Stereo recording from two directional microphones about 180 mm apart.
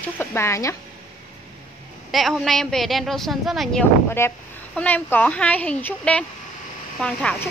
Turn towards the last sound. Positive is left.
turn(degrees=5)  # may be behind; listen again after turning